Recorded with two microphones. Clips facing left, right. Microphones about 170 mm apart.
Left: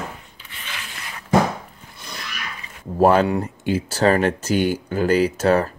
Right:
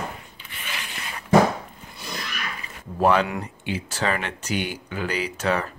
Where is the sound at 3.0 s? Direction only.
40° left (ahead or behind).